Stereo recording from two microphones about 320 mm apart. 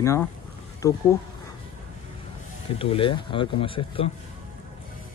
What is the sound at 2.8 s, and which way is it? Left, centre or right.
Speech, centre.